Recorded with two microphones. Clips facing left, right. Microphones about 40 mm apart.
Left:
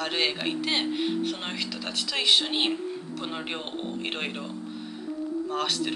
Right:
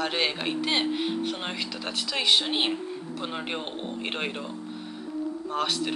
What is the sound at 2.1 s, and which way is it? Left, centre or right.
Speech, centre.